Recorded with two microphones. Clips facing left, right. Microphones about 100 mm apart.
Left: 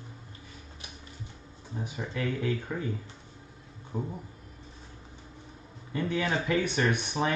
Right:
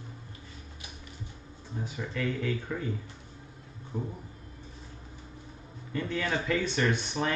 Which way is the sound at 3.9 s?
20° left (ahead or behind).